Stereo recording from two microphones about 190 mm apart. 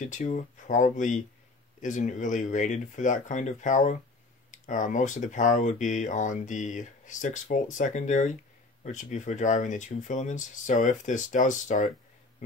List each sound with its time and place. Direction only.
0.0 s speech: 40° left (ahead or behind)